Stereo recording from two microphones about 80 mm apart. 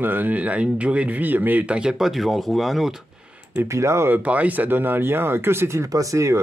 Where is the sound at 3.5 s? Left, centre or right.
Right.